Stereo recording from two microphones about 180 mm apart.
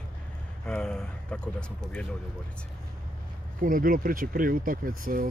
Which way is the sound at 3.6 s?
50° right (ahead or behind).